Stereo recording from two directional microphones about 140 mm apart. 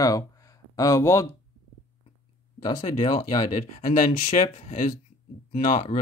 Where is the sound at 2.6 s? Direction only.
30° left (ahead or behind).